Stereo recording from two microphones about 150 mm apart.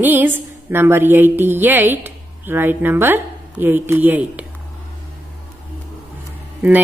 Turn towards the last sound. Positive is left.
turn(degrees=-15)  # may be behind; listen again after turning